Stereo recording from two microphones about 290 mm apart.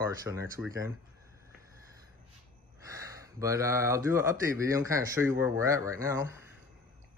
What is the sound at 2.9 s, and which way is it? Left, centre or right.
Speech, centre.